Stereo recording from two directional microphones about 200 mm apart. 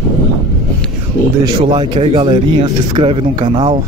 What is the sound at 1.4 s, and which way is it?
Speech, 20° right (ahead or behind).